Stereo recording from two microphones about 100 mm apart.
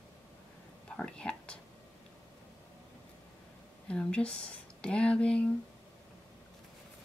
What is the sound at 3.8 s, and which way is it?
Speech, 10° left (ahead or behind).